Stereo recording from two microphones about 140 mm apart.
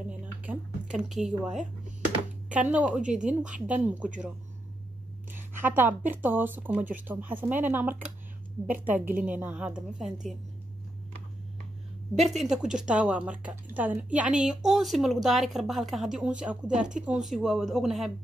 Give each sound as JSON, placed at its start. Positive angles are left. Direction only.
{"t": 0.4, "sound": "speech", "side_deg": -10}
{"t": 5.3, "sound": "speech", "side_deg": -15}
{"t": 12.2, "sound": "a woman's voice", "side_deg": 0}